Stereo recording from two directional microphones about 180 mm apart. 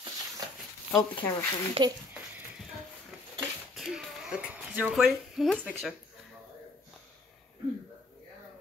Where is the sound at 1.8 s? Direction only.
25° right (ahead or behind).